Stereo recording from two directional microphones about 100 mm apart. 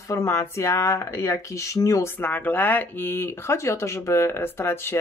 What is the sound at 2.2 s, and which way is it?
Speech, 20° left (ahead or behind).